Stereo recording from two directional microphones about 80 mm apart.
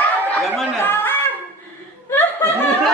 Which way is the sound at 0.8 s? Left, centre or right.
Left.